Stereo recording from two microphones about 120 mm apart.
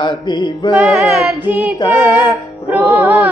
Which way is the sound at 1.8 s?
40° left (ahead or behind).